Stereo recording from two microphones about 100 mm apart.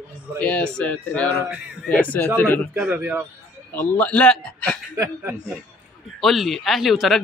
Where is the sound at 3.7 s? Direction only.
15° left (ahead or behind).